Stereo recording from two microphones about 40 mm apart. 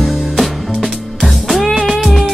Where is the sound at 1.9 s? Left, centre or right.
Centre.